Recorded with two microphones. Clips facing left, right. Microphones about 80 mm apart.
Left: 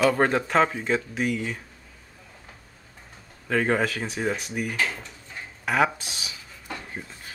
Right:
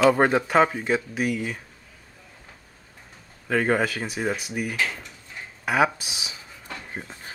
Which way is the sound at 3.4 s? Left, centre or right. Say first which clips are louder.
Right 1 dB; centre.